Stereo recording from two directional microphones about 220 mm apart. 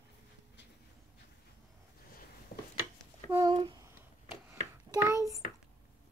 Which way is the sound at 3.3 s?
20° right (ahead or behind).